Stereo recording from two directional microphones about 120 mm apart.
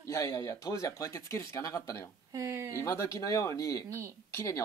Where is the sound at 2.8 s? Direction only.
25° left (ahead or behind).